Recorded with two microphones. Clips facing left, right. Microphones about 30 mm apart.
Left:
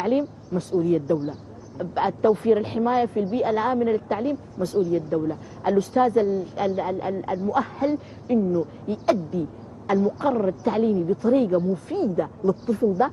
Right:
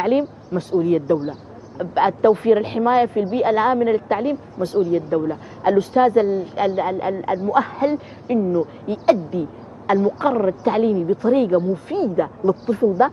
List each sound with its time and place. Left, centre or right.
0.0 s a woman's voice: right